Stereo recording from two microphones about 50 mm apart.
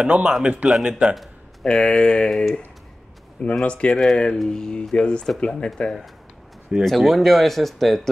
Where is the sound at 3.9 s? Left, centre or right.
Centre.